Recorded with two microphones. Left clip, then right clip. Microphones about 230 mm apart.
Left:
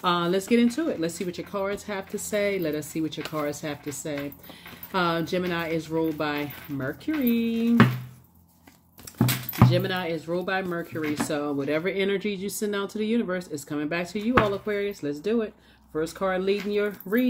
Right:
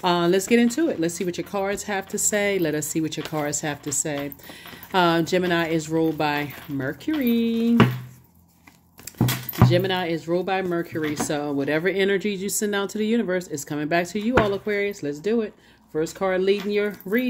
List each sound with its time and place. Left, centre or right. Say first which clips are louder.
0.0 s speech: right 4 dB; right
9.7 s speech: right 4 dB; right